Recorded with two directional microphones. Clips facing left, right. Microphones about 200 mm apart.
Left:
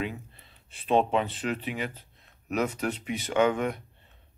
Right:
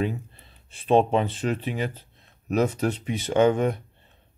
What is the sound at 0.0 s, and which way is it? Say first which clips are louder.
Speech: right 6 dB; 40° right (ahead or behind).